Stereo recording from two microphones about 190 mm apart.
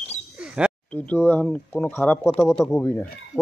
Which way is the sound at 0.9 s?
10° left (ahead or behind).